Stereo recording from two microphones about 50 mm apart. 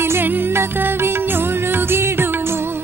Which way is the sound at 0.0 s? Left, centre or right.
Right.